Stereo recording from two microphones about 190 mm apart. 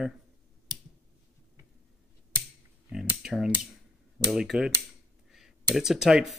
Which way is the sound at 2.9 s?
5° right (ahead or behind).